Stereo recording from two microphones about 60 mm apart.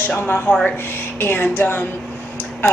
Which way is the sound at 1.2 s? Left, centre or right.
Left.